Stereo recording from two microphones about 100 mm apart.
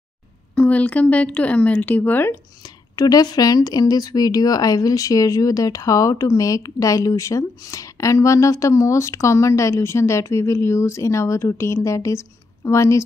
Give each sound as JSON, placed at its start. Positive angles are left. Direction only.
{"t": 0.6, "sound": "speech", "side_deg": 15}
{"t": 2.6, "sound": "speech", "side_deg": 40}